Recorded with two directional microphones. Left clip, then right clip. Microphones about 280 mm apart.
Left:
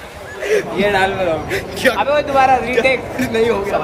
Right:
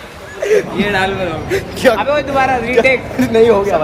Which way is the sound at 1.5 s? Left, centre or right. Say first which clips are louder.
Right 4 dB; centre.